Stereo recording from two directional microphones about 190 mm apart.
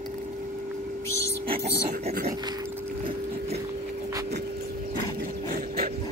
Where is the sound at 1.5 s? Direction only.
50° right (ahead or behind).